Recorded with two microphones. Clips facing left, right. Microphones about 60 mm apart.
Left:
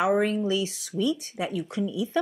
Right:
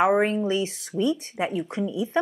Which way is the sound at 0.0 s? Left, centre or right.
Right.